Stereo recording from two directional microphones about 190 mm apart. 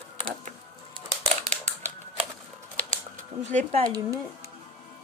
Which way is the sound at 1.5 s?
35° right (ahead or behind).